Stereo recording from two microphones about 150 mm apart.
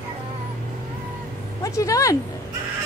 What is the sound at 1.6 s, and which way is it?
Speech, 20° left (ahead or behind).